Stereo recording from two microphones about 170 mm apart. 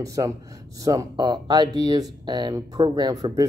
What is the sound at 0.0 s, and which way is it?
Speech, 20° right (ahead or behind).